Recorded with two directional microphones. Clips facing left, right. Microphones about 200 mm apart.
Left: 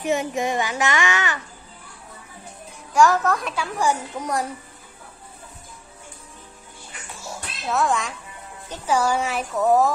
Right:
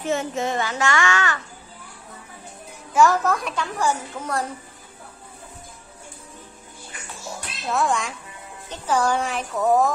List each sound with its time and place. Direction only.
0.0 s a child's voice: 15° left (ahead or behind)
2.9 s a child's voice: centre (ahead or behind)
3.8 s a child's voice: 15° left (ahead or behind)
7.6 s a child's voice: centre (ahead or behind)